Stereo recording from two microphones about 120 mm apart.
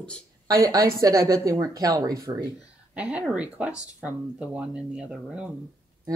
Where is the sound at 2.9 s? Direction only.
10° right (ahead or behind).